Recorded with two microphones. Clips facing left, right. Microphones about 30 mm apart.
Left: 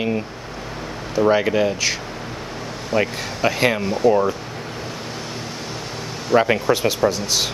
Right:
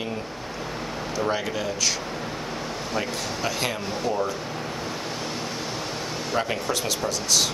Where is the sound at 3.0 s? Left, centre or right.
Left.